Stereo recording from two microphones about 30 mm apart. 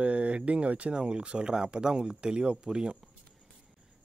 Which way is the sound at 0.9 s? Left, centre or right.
Right.